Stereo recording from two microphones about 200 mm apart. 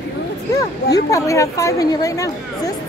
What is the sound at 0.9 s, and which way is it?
Speech, 15° left (ahead or behind).